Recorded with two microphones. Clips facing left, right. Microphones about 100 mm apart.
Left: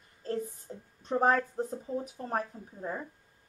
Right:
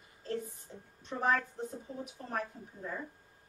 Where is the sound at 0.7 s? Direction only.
40° left (ahead or behind).